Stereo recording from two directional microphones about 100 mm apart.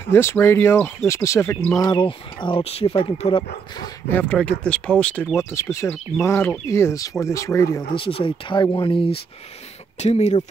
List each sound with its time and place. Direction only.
0.0 s speech: 25° left (ahead or behind)
1.8 s speech: 45° left (ahead or behind)
2.0 s speech: 60° left (ahead or behind)
4.1 s speech: 15° left (ahead or behind)
5.4 s speech: 30° left (ahead or behind)
7.9 s speech: 60° left (ahead or behind)
9.9 s speech: 90° left